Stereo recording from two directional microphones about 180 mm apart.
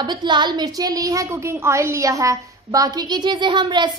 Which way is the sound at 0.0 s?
25° right (ahead or behind).